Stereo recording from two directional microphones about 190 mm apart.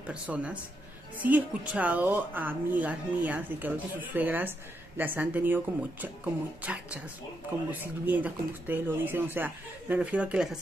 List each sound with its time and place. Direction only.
0.0 s a woman's voice: 5° right (ahead or behind)